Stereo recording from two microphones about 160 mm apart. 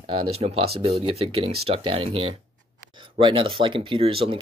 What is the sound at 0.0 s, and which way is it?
Speech, 30° right (ahead or behind).